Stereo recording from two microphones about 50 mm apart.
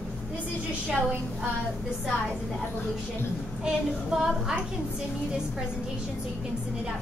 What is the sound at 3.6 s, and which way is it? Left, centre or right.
Child singing, centre.